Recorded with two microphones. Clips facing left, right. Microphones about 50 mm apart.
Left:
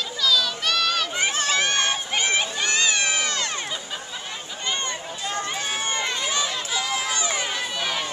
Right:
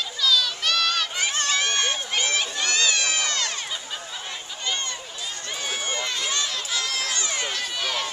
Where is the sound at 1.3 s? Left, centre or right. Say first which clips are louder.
Left 2 dB; centre.